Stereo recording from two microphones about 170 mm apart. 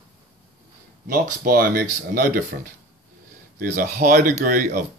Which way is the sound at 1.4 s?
60° right (ahead or behind).